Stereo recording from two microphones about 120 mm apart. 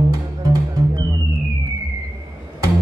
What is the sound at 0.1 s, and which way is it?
Music, 30° right (ahead or behind).